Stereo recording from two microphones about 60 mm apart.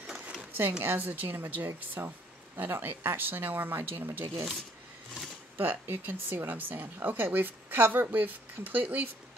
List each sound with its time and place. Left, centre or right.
0.0 s a sound: centre
0.5 s speech: right
1.7 s speech: right
5.6 s speech: right